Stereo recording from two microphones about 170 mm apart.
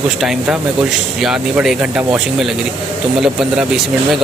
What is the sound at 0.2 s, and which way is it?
Speech, centre (ahead or behind).